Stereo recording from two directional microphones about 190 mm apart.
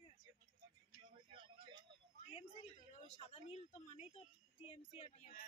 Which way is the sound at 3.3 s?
35° left (ahead or behind).